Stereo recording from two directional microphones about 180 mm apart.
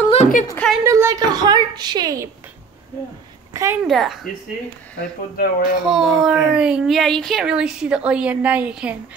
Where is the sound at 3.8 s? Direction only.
Centre (ahead or behind).